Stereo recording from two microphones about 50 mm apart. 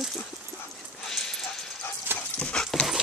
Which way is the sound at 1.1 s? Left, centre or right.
Centre.